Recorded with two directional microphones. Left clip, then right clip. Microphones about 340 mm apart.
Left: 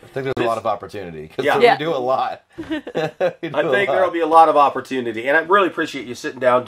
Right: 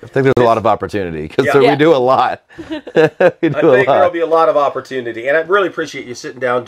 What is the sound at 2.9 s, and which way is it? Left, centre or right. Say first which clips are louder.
Speech: right 11 dB; right.